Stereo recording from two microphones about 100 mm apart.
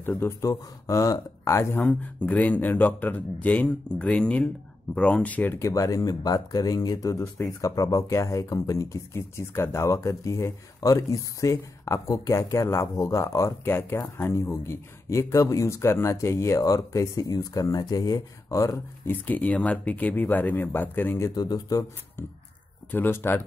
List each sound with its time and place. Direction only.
0.0 s speech: 20° left (ahead or behind)
0.5 s speech: 35° left (ahead or behind)
2.2 s speech: 15° left (ahead or behind); by 18.8 s 35° left (ahead or behind)
19.0 s speech: 15° left (ahead or behind)
21.4 s speech: 40° left (ahead or behind)
22.8 s speech: 20° left (ahead or behind)